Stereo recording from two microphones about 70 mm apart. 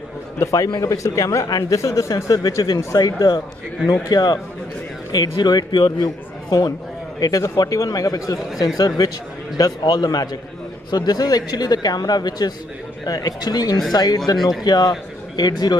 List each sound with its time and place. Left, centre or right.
0.4 s speech: left
4.1 s speech: left
5.1 s a man's voice: left